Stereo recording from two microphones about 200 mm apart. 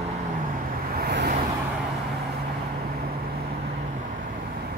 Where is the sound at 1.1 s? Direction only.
55° right (ahead or behind).